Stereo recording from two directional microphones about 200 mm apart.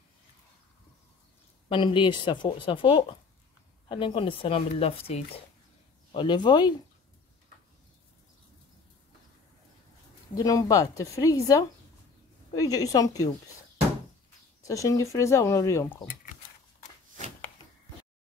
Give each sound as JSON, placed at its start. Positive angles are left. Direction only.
{"t": 1.7, "sound": "a woman's voice", "side_deg": 25}
{"t": 10.3, "sound": "speech", "side_deg": 15}
{"t": 14.6, "sound": "speech", "side_deg": 15}